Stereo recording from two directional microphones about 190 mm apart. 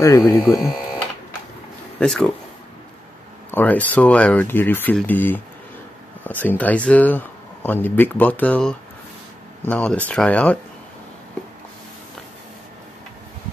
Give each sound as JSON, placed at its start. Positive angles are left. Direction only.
{"t": 0.0, "sound": "speech", "side_deg": 15}
{"t": 2.0, "sound": "speech", "side_deg": 0}
{"t": 3.5, "sound": "speech", "side_deg": 10}
{"t": 6.4, "sound": "speech", "side_deg": 10}